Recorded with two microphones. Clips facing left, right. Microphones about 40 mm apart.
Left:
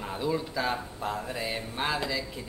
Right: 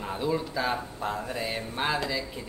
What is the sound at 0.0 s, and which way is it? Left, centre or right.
Speech, centre.